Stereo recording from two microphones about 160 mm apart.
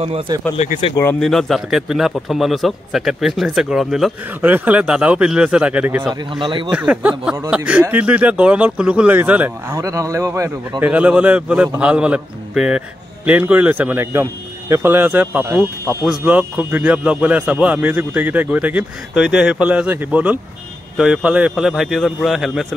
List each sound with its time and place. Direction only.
1.2 s a man's voice: centre (ahead or behind)
6.4 s speech: 30° right (ahead or behind)
6.7 s a man's voice: 10° right (ahead or behind)